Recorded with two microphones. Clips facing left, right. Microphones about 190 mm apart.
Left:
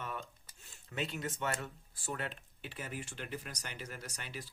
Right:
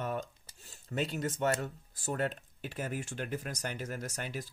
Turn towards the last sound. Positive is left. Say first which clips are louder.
# right 7 dB
turn(degrees=-45)  # may be behind; listen again after turning